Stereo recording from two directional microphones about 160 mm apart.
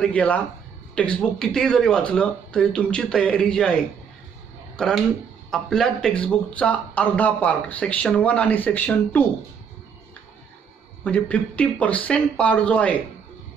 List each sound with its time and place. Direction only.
0.0 s speech: 10° left (ahead or behind)
4.7 s speech: centre (ahead or behind)
11.1 s speech: 10° left (ahead or behind)